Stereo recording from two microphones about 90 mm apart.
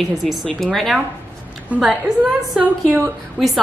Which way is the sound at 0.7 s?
Centre (ahead or behind).